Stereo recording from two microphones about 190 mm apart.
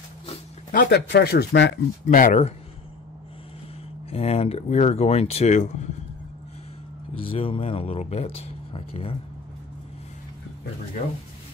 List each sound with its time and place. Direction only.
0.3 s dog: 45° left (ahead or behind)
0.8 s speech: 60° left (ahead or behind)
2.0 s speech: 45° left (ahead or behind)
4.1 s speech: 30° left (ahead or behind)
7.2 s speech: 30° left (ahead or behind)